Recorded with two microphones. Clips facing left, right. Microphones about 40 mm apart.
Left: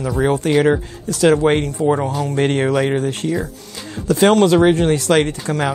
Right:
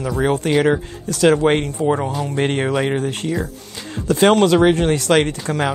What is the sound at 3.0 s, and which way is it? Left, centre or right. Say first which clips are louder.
Speech: left 2 dB; right.